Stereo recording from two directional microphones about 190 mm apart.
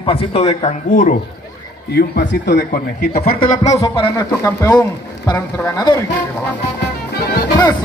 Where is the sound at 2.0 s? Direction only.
55° left (ahead or behind).